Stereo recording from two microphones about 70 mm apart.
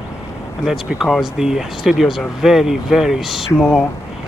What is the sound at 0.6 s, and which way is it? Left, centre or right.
Speech, centre.